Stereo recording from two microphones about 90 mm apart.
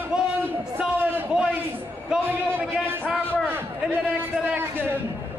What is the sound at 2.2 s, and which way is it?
Speech, 20° right (ahead or behind).